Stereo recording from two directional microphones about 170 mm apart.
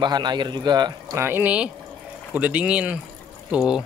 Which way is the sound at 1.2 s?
10° right (ahead or behind).